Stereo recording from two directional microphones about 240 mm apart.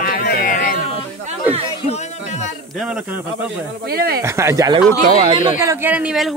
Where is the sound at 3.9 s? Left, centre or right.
Right.